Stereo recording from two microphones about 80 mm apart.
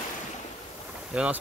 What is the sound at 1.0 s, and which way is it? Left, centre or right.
Speech, centre.